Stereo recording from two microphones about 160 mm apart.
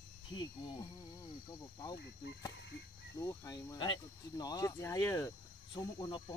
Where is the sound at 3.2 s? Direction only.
25° left (ahead or behind).